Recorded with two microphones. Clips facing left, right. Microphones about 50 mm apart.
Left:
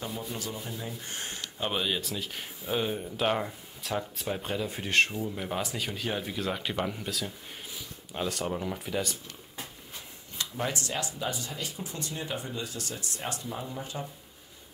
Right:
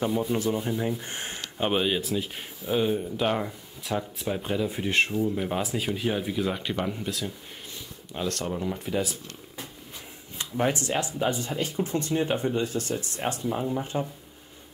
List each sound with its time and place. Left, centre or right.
0.3 s speech: right
2.6 s speech: centre
10.3 s speech: right